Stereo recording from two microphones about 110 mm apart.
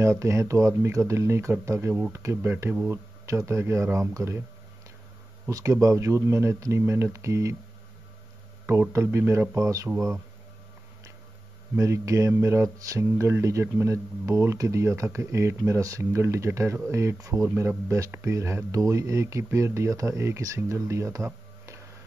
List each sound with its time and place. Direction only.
0.0 s speech: 25° right (ahead or behind)
5.5 s speech: 30° right (ahead or behind)
8.6 s speech: 25° right (ahead or behind)
11.7 s speech: 25° right (ahead or behind)